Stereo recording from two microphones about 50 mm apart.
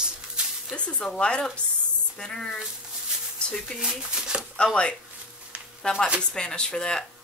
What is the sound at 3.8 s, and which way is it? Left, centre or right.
Speech, centre.